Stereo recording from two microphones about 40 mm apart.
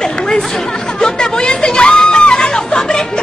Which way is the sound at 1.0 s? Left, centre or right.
Centre.